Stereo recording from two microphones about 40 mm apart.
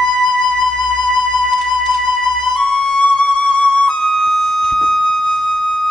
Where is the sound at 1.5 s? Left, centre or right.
Centre.